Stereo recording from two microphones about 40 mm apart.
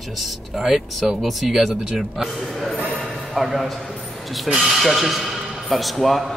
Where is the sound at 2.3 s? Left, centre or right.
Centre.